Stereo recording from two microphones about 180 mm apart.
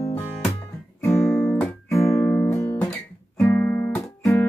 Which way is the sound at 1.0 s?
20° left (ahead or behind).